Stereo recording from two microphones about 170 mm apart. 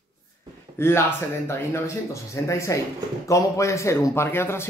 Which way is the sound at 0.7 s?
15° left (ahead or behind).